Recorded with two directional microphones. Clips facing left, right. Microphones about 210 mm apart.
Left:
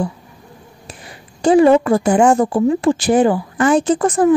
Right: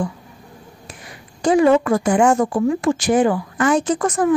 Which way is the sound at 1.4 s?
30° left (ahead or behind).